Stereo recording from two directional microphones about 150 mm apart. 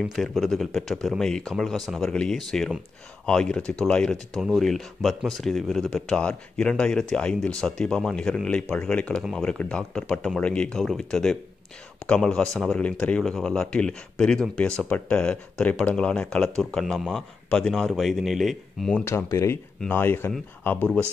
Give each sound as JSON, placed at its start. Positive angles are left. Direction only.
{"t": 0.0, "sound": "speech", "side_deg": 0}
{"t": 19.0, "sound": "speech", "side_deg": 15}